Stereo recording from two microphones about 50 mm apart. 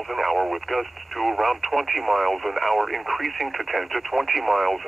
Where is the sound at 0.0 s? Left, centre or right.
Centre.